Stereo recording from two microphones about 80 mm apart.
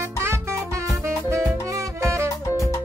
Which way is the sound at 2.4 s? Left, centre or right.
Left.